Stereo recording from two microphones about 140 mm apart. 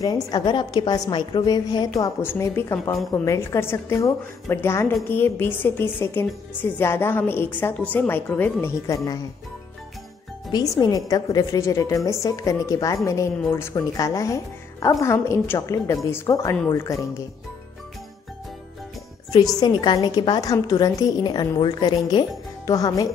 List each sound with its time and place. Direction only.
0.0 s a woman's voice: 30° left (ahead or behind)
2.2 s a woman's voice: 15° left (ahead or behind)
10.5 s a woman's voice: 25° left (ahead or behind)
19.6 s a woman's voice: 30° left (ahead or behind)